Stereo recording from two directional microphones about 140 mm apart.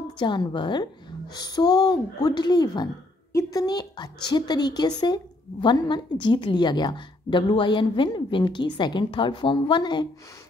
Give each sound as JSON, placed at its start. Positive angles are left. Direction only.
{"t": 0.2, "sound": "a woman's voice", "side_deg": 30}